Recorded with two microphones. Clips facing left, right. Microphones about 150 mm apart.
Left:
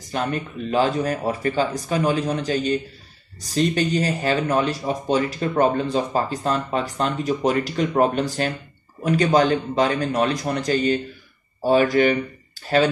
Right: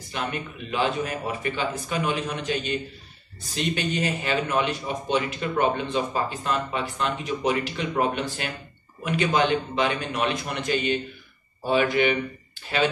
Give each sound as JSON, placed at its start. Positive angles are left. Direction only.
{"t": 0.0, "sound": "speech", "side_deg": 40}